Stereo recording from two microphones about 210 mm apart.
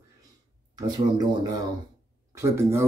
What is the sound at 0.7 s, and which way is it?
Speech, 20° right (ahead or behind).